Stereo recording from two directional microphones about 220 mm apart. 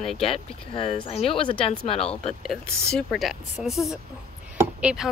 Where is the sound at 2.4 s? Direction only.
Centre (ahead or behind).